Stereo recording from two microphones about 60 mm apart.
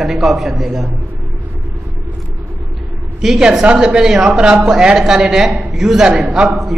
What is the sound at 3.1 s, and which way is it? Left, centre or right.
A woman's voice, centre.